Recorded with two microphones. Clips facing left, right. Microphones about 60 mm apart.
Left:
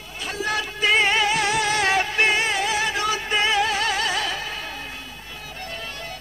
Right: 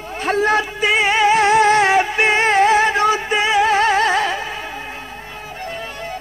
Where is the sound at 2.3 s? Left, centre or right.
Right; by 3.7 s centre.